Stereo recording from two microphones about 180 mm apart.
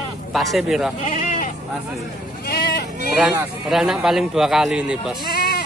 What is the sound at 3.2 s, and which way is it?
A man's voice, 10° right (ahead or behind).